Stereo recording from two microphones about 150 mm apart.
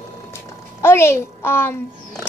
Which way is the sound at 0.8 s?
15° left (ahead or behind).